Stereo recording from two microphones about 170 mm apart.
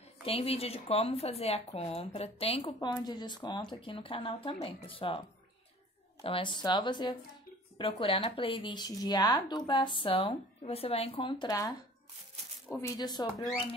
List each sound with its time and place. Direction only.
0.2 s speech: 35° left (ahead or behind)
6.2 s speech: 30° left (ahead or behind)